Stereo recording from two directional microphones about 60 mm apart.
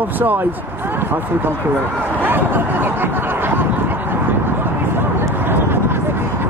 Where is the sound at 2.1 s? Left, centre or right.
Right.